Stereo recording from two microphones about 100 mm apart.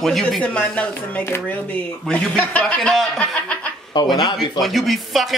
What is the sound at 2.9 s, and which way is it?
Speech, centre (ahead or behind).